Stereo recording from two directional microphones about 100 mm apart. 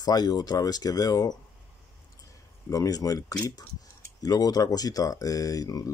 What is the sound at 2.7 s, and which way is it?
Speech, 35° left (ahead or behind).